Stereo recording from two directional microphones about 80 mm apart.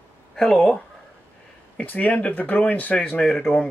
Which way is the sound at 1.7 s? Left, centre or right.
Centre.